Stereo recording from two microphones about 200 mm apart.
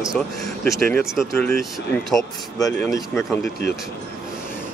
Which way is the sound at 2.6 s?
15° left (ahead or behind).